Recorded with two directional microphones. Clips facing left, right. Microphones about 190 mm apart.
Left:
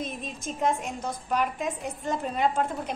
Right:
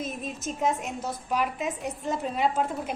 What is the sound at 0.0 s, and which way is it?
A woman's voice, 5° right (ahead or behind).